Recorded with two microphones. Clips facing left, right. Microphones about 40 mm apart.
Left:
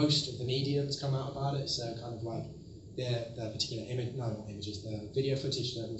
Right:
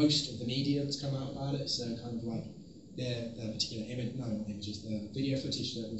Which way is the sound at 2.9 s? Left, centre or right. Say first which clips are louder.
Left 2 dB; left.